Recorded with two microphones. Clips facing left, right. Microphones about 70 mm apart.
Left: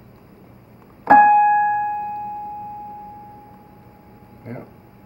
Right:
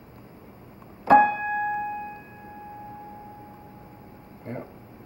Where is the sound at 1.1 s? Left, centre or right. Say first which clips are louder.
Left 5 dB; left.